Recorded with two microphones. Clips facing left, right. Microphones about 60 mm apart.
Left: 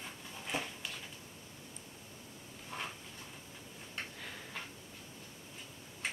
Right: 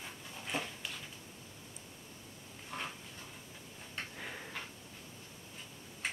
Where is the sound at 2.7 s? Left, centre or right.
Centre.